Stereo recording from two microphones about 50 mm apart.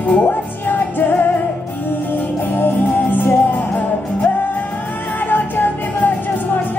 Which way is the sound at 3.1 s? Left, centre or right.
Left.